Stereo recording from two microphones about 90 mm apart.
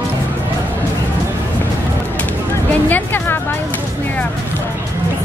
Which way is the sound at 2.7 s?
20° left (ahead or behind).